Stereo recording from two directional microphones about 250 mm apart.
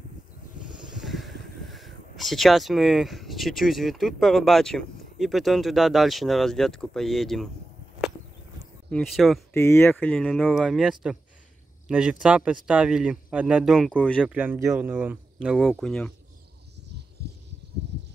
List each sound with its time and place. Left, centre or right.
0.7 s speech: centre
8.9 s speech: centre
9.6 s speech: centre
17.2 s a sound: right